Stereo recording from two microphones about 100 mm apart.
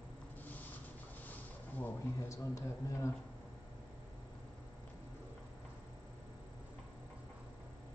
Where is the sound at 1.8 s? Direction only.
30° left (ahead or behind).